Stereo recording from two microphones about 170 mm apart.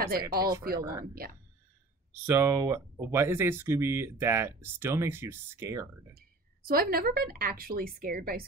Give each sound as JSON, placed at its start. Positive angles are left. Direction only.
{"t": 0.0, "sound": "a woman's voice", "side_deg": -65}
{"t": 2.2, "sound": "speech", "side_deg": -15}
{"t": 6.1, "sound": "a woman's voice", "side_deg": -60}